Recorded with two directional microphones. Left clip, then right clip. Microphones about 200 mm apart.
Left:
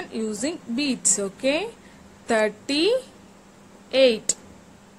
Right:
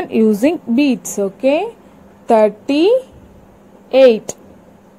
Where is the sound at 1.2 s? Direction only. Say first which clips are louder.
Right 13 dB; 5° right (ahead or behind).